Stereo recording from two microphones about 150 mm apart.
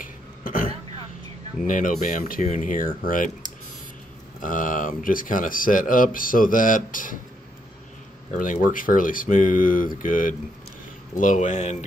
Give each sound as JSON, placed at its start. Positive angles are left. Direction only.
{"t": 0.0, "sound": "throat clearing", "side_deg": 70}
{"t": 1.7, "sound": "speech", "side_deg": 65}
{"t": 4.4, "sound": "speech", "side_deg": 65}
{"t": 8.3, "sound": "speech", "side_deg": 60}